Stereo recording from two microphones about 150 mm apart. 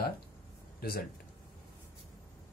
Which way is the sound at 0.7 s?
90° left.